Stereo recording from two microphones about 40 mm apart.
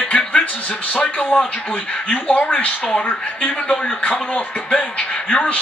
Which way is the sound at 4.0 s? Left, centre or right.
Left.